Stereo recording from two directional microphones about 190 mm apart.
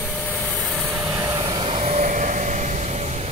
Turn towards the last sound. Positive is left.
turn(degrees=-35)  # may be behind; listen again after turning